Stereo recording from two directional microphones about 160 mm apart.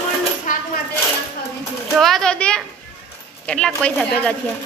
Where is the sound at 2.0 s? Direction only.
5° left (ahead or behind).